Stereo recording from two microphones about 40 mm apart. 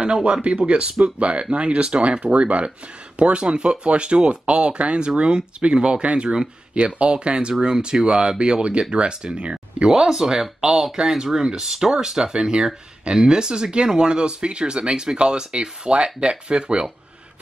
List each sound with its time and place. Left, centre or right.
0.1 s speech: right
9.8 s speech: centre